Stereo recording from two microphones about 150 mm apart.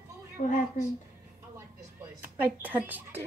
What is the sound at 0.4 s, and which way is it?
Speech, 55° left (ahead or behind).